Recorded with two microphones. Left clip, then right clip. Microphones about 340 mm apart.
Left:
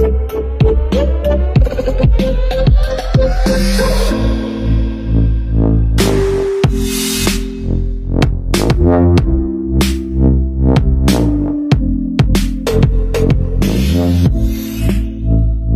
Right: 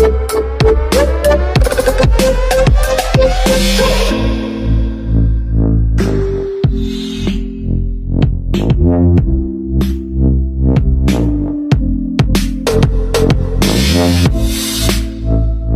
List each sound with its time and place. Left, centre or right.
0.0 s music: right; by 5.2 s centre
5.6 s music: centre; by 9.4 s left
9.8 s music: left; by 11.8 s centre
12.2 s music: centre; by 15.4 s right